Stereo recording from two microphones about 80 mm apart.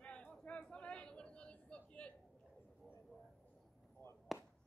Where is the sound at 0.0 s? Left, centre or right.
Centre.